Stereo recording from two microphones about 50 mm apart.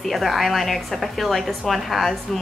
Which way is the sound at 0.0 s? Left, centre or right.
Centre.